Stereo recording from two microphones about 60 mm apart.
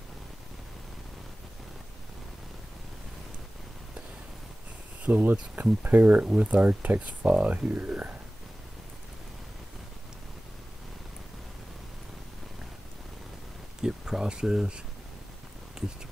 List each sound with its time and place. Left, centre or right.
5.0 s speech: right
13.8 s speech: centre
15.8 s a sound: centre